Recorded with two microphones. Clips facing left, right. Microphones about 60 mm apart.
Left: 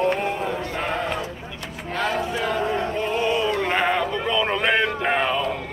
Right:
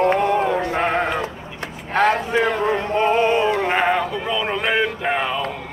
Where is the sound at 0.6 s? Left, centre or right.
Right.